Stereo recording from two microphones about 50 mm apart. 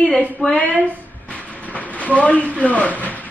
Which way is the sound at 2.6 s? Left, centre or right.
Left.